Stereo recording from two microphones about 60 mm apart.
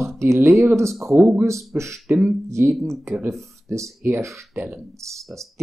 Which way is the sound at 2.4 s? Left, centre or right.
Right.